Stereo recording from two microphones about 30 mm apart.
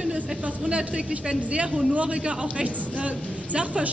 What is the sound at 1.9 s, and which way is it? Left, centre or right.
Speech, right.